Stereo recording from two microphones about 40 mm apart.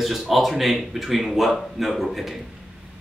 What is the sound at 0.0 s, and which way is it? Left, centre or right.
Speech, centre.